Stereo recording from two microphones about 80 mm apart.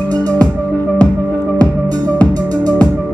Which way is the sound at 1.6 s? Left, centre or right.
Right.